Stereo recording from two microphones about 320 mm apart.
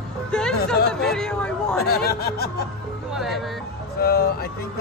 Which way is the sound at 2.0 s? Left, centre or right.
Left.